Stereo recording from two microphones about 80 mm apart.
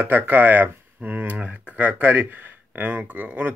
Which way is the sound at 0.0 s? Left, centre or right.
Right.